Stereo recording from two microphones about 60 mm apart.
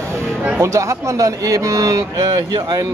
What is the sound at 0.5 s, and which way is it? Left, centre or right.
Speech, right.